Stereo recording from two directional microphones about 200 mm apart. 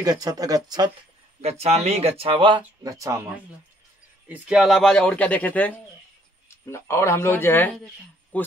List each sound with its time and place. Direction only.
0.0 s speech: 20° right (ahead or behind)
1.4 s speech: 30° right (ahead or behind); by 3.2 s 15° right (ahead or behind)
4.3 s a man's voice: 5° right (ahead or behind)